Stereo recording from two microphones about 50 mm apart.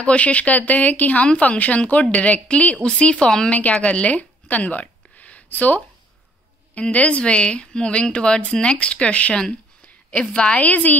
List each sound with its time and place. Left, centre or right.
0.0 s speech: left
3.8 s a sound: left
6.7 s speech: left